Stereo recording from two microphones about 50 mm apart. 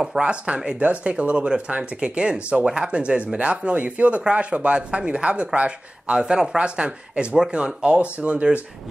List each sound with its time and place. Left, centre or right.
0.0 s speech: centre
0.7 s speech: right